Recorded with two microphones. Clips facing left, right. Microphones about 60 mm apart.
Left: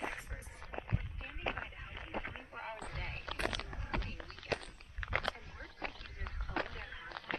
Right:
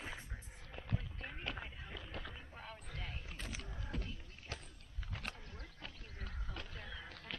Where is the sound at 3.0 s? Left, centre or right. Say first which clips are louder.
Left 12 dB; left.